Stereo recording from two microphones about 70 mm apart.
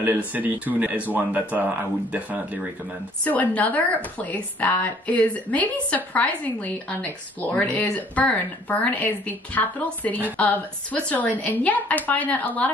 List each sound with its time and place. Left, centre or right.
0.0 s speech: right
3.3 s a woman's voice: left